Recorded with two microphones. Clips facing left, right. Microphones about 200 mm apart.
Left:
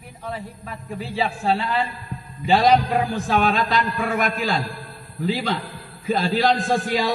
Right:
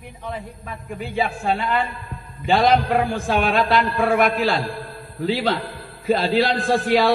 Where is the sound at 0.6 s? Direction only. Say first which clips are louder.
Even; 35° left (ahead or behind).